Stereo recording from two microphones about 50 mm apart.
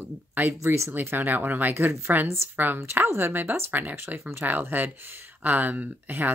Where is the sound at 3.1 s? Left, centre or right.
Right.